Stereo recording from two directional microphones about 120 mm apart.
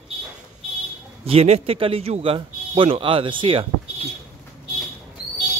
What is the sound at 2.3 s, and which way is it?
Speech, 45° right (ahead or behind).